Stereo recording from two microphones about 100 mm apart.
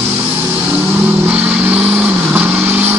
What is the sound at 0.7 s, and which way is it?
Vehicle, 20° right (ahead or behind).